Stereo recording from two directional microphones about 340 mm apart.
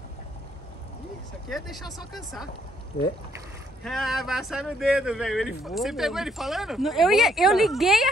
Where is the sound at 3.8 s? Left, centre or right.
Centre.